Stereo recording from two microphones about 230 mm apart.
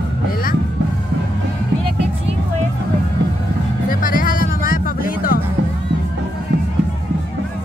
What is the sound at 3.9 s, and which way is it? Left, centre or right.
Music, left.